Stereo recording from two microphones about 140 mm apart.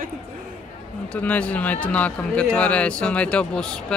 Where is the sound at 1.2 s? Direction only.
10° left (ahead or behind).